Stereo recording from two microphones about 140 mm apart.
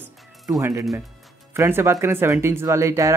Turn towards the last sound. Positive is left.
turn(degrees=-20)  # may be behind; listen again after turning